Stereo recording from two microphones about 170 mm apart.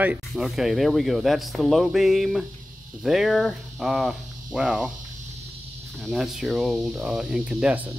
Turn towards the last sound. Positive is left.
turn(degrees=-10)  # may be behind; listen again after turning